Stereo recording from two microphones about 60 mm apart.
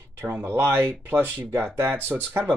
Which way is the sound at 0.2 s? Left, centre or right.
Right.